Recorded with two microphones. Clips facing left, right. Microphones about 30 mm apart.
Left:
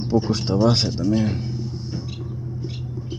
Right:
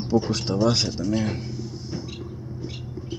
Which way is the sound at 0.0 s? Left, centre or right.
Centre.